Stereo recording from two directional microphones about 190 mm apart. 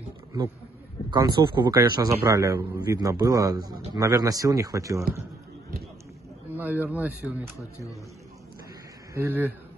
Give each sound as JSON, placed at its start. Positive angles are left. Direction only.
{"t": 1.1, "sound": "a man's voice", "side_deg": -25}
{"t": 6.5, "sound": "speech", "side_deg": -10}
{"t": 9.1, "sound": "speech", "side_deg": -10}